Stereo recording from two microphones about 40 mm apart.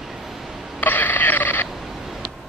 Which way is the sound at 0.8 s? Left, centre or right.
Left.